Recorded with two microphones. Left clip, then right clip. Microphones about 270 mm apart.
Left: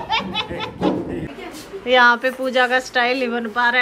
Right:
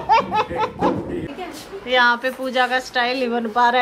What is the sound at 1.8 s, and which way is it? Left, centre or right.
A woman's voice, centre.